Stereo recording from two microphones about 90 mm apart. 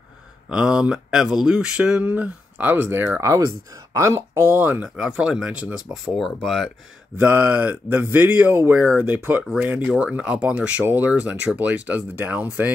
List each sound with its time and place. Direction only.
0.5 s speech: 10° right (ahead or behind); by 4.6 s 30° right (ahead or behind)
4.6 s speech: 20° right (ahead or behind)
4.8 s speech: 10° right (ahead or behind)
7.2 s speech: 20° right (ahead or behind)